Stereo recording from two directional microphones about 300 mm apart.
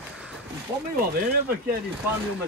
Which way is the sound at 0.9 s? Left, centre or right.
Right.